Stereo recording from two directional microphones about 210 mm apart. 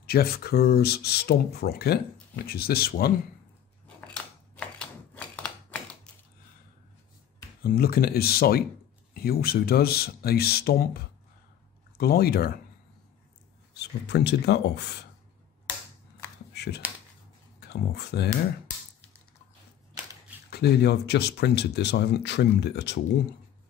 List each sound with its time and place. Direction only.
0.0 s speech: 45° left (ahead or behind)
3.8 s a sound: 5° left (ahead or behind)
7.6 s speech: 45° left (ahead or behind)
12.0 s speech: 45° left (ahead or behind)
13.7 s speech: 55° left (ahead or behind)
16.5 s a sound: 50° left (ahead or behind)
17.6 s speech: 50° left (ahead or behind)
20.4 s speech: 50° left (ahead or behind)